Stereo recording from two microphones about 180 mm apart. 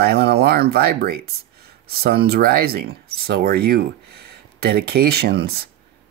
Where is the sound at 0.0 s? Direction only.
65° right (ahead or behind).